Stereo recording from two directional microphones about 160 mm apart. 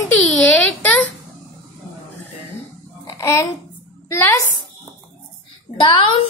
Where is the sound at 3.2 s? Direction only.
15° left (ahead or behind).